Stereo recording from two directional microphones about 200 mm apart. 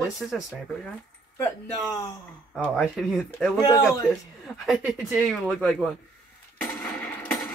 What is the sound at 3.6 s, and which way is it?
Speech, 15° left (ahead or behind).